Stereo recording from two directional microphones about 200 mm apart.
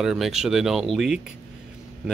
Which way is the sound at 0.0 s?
Centre (ahead or behind).